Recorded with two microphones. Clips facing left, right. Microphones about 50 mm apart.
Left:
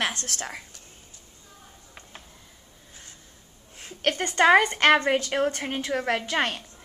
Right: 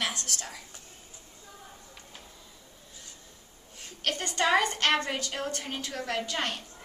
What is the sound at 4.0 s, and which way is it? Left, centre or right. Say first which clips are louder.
A woman's voice: left 7 dB; left.